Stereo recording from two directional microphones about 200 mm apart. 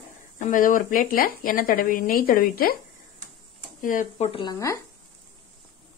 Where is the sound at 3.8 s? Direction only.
40° left (ahead or behind).